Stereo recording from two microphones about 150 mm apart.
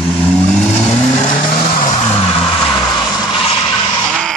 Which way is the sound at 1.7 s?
60° left (ahead or behind).